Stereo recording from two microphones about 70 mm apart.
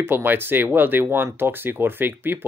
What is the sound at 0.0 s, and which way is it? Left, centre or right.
Speech, right.